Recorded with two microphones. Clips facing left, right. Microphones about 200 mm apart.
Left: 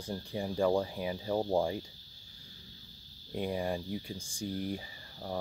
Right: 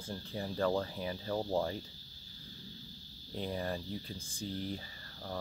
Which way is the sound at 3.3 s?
15° left (ahead or behind).